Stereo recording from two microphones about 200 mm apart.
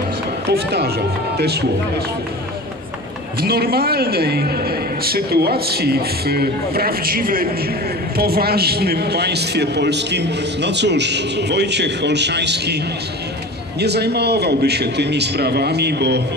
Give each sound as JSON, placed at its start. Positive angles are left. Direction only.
{"t": 0.5, "sound": "a man's voice", "side_deg": -55}
{"t": 3.3, "sound": "a man's voice", "side_deg": -50}
{"t": 13.7, "sound": "a man's voice", "side_deg": -55}